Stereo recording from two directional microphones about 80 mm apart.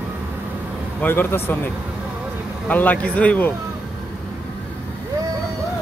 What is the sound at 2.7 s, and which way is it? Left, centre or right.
Speech, left.